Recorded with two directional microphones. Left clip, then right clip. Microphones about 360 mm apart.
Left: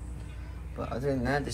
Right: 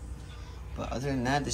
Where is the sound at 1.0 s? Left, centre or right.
Centre.